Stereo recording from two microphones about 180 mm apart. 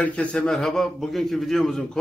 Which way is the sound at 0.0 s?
5° left (ahead or behind).